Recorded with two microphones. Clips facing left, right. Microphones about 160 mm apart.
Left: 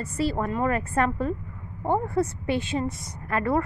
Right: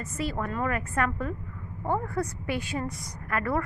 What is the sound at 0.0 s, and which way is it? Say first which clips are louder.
A woman's voice: left 5 dB; 30° left (ahead or behind).